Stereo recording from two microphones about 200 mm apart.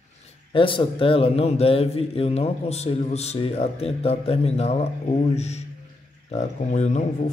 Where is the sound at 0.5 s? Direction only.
25° left (ahead or behind).